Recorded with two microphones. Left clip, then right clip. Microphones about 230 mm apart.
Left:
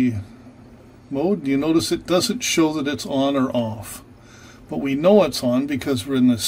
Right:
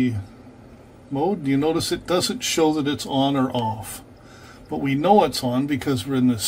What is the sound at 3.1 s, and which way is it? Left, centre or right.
Speech, left.